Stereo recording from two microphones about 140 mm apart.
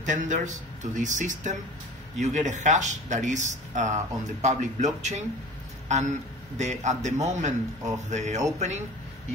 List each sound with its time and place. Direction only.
0.0 s a man's voice: 60° right (ahead or behind)